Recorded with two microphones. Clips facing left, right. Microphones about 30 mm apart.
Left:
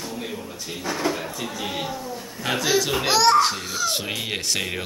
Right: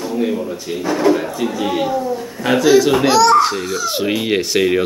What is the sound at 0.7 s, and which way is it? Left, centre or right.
Speech, centre.